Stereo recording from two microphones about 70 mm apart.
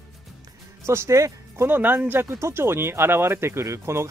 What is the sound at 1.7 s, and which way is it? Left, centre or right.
Speech, right.